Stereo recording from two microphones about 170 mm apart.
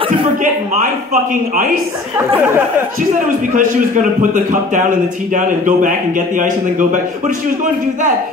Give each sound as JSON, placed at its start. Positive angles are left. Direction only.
{"t": 1.3, "sound": "a man's voice", "side_deg": -50}
{"t": 2.1, "sound": "speech", "side_deg": -15}
{"t": 3.5, "sound": "a man's voice", "side_deg": -50}